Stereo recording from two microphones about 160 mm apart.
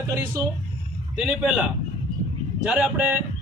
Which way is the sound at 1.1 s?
5° right (ahead or behind).